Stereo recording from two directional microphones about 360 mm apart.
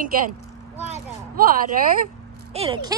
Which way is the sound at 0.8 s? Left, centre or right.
Right.